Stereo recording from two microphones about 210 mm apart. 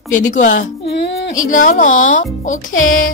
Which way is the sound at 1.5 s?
40° left (ahead or behind).